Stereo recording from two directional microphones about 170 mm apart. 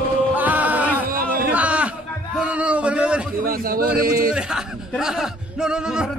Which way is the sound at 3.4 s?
60° right (ahead or behind).